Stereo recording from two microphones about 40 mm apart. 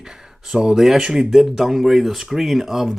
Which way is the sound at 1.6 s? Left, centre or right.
Centre.